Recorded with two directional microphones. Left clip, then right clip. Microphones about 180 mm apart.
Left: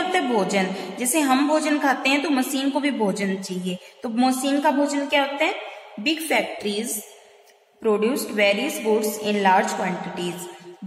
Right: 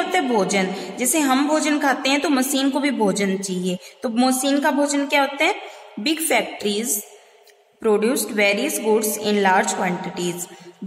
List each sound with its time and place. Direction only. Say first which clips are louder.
0.1 s a woman's voice: right 3 dB; 25° right (ahead or behind)